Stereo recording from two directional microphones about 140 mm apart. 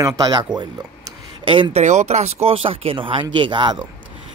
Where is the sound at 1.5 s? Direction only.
35° right (ahead or behind).